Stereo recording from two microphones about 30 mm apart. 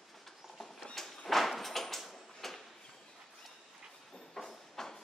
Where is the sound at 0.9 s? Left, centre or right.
Centre.